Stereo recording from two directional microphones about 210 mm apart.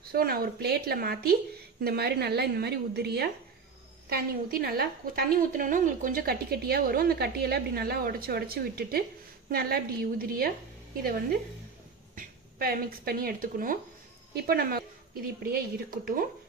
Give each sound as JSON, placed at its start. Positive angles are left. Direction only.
{"t": 0.0, "sound": "a woman's voice", "side_deg": -45}
{"t": 12.2, "sound": "a woman's voice", "side_deg": -45}